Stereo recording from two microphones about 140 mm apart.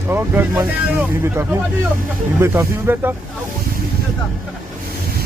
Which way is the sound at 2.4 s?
15° right (ahead or behind).